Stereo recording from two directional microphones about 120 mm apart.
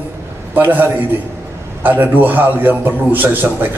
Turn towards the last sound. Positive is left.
turn(degrees=-15)  # may be behind; listen again after turning